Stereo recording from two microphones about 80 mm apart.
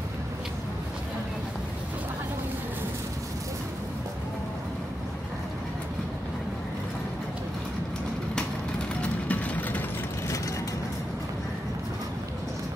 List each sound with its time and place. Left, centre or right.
9.3 s vehicle: left